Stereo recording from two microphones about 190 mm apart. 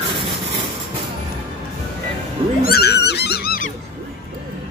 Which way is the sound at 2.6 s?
55° left (ahead or behind).